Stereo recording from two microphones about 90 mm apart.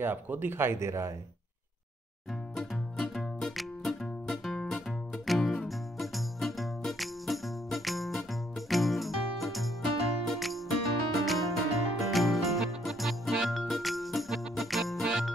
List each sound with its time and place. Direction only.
0.0 s speech: 25° right (ahead or behind)
2.5 s music: centre (ahead or behind)